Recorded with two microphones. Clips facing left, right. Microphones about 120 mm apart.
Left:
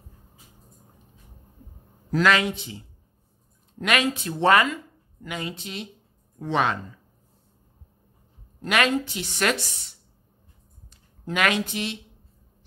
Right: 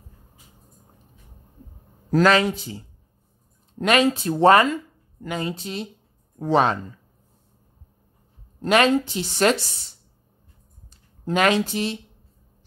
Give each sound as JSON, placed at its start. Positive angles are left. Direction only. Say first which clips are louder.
{"t": 2.0, "sound": "a woman's voice", "louder": "right 4 dB", "side_deg": -40}
{"t": 8.5, "sound": "a woman's voice", "louder": "right 5 dB", "side_deg": -30}
{"t": 10.9, "sound": "speech", "louder": "right 6 dB", "side_deg": -35}